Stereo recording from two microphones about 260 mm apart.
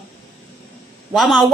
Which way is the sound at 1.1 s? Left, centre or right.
Centre.